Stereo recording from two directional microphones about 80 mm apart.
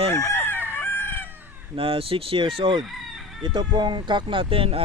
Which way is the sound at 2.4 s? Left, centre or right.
Right.